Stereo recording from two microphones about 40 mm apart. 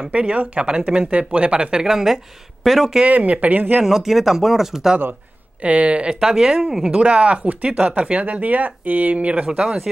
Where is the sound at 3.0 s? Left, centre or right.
Right.